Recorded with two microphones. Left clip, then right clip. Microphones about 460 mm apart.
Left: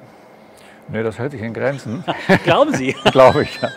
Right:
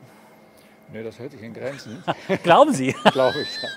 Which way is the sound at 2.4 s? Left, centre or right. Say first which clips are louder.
Right 5 dB; right.